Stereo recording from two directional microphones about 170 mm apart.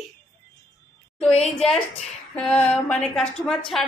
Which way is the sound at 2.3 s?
5° left (ahead or behind).